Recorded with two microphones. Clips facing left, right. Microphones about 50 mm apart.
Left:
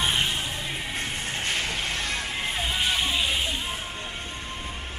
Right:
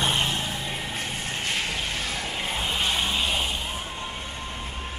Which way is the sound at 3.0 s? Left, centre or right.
Centre.